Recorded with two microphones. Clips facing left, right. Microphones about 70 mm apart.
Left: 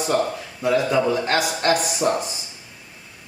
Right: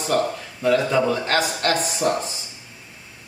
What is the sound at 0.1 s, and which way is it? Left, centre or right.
A man's voice, centre.